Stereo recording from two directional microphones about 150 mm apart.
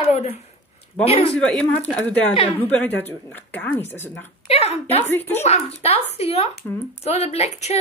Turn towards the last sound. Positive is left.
turn(degrees=45)  # may be behind; listen again after turning